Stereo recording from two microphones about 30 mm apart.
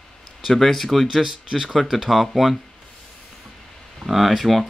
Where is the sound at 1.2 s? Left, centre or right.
Centre.